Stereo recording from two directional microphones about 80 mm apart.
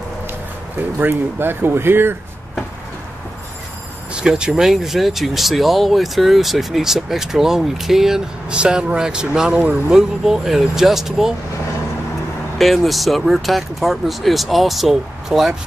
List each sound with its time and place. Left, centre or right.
0.9 s speech: right
4.1 s speech: centre
12.5 s speech: centre